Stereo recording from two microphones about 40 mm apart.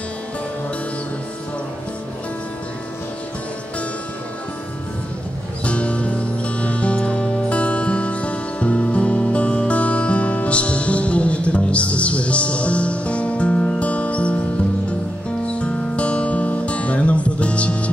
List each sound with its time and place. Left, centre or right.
5.6 s music: left
15.4 s music: left